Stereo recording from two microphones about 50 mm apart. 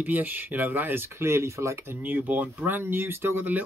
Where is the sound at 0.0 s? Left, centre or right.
Right.